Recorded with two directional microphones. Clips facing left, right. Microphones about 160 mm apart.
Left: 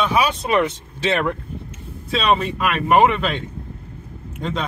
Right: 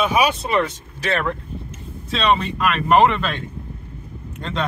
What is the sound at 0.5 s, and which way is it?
Speech, 20° left (ahead or behind).